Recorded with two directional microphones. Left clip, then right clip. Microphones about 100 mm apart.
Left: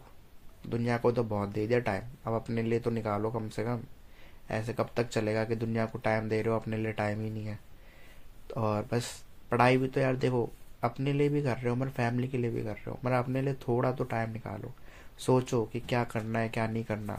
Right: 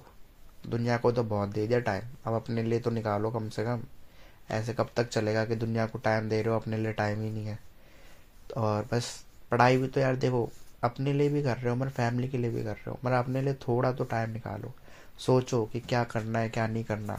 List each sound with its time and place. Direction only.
0.7 s speech: 30° right (ahead or behind)